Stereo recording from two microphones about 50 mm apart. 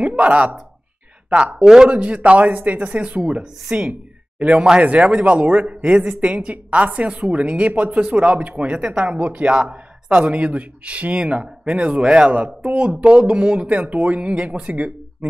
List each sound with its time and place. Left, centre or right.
0.0 s speech: right
1.6 s speech: centre
8.7 s speech: centre
9.0 s speech: right
12.0 s speech: centre
12.3 s speech: right